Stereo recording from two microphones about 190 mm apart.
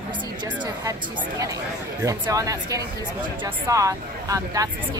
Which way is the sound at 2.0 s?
15° right (ahead or behind).